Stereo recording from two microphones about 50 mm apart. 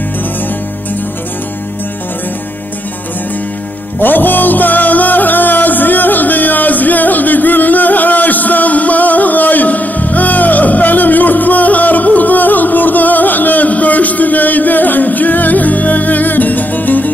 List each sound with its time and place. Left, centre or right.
4.0 s music: left